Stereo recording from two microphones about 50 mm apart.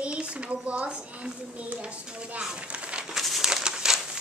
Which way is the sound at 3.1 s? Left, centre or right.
Centre.